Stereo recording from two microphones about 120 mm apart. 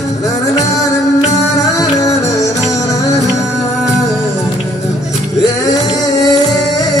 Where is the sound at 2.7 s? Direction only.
25° left (ahead or behind).